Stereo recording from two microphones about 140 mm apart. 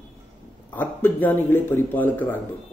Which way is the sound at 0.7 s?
15° left (ahead or behind).